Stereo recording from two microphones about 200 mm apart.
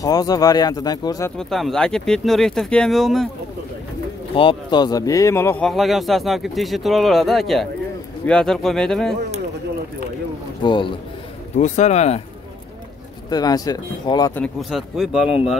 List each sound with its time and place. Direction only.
0.0 s speech: 20° left (ahead or behind)
1.4 s speech: centre (ahead or behind)
4.4 s speech: 25° left (ahead or behind); by 9.1 s 5° left (ahead or behind)
10.6 s a man's voice: 25° left (ahead or behind)
11.5 s speech: 35° left (ahead or behind)
13.3 s speech: 20° left (ahead or behind)
14.3 s speech: 5° left (ahead or behind)